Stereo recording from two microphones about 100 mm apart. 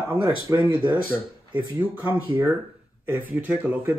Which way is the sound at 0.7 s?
15° right (ahead or behind).